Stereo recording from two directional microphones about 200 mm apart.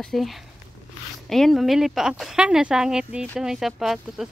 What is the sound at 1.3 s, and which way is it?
Speech, centre (ahead or behind).